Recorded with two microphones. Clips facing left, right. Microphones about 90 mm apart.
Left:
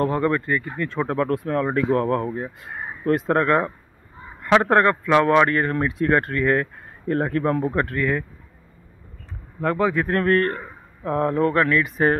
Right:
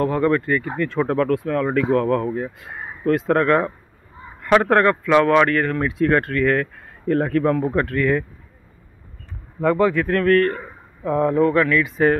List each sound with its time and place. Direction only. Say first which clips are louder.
0.2 s a man's voice: right 3 dB; 10° left (ahead or behind)
1.3 s speech: right 2 dB; 35° left (ahead or behind)
1.6 s speech: right 1 dB; 25° left (ahead or behind)
4.6 s a man's voice: right 1 dB; 20° left (ahead or behind)
5.5 s speech: right 1 dB; 25° left (ahead or behind)
8.0 s speech: right 6 dB; 5° left (ahead or behind)
9.6 s speech: right 4 dB; centre (ahead or behind)
10.0 s speech: right 3 dB; 25° left (ahead or behind)
11.1 s a sound: right 3 dB; 15° right (ahead or behind)
11.5 s speech: right 2 dB; 35° left (ahead or behind)